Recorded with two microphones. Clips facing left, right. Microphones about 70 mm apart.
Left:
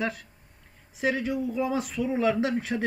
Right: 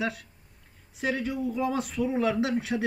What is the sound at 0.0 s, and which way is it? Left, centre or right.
Speech, centre.